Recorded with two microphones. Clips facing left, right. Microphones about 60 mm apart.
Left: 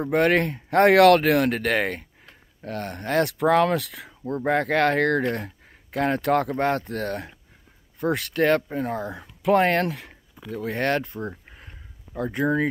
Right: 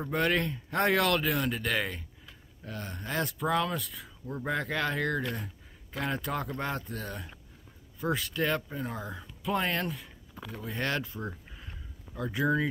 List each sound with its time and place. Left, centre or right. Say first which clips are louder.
0.1 s speech: left 8 dB; left
4.5 s speech: left 10 dB; left
8.0 s speech: left 8 dB; left
10.9 s speech: left 8 dB; left
11.2 s a sound: left 5 dB; left
12.2 s speech: left 5 dB; left